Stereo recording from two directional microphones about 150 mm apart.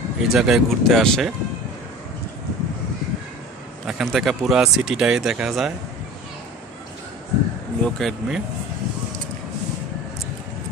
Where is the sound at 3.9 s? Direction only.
Centre (ahead or behind).